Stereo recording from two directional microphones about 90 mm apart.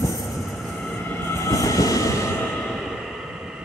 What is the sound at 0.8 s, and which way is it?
Train, 20° left (ahead or behind).